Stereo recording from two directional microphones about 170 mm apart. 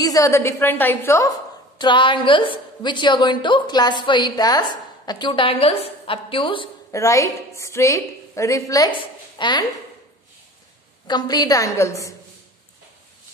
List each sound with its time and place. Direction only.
0.0 s a woman's voice: 20° left (ahead or behind)
1.8 s a woman's voice: 30° left (ahead or behind)
6.9 s a woman's voice: 20° left (ahead or behind)
11.1 s a woman's voice: 25° left (ahead or behind)